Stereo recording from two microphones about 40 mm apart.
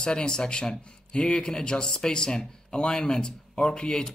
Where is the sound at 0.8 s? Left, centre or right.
Left.